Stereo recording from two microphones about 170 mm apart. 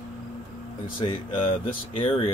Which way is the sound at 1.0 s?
30° left (ahead or behind).